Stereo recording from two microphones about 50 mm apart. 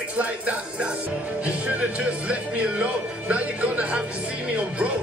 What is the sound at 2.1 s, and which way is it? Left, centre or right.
Speech, right.